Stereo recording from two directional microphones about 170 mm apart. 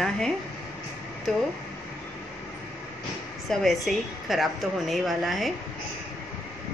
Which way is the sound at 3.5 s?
Centre (ahead or behind).